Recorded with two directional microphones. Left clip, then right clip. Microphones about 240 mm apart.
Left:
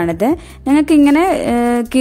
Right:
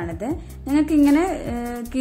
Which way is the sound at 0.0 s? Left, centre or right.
Left.